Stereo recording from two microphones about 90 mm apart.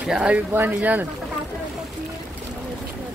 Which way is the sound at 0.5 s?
20° right (ahead or behind).